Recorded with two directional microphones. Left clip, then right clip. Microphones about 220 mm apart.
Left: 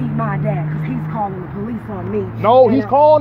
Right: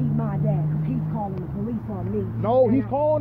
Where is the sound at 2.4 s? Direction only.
15° left (ahead or behind).